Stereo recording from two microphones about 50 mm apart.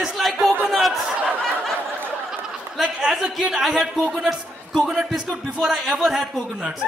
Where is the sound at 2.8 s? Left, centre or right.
Centre.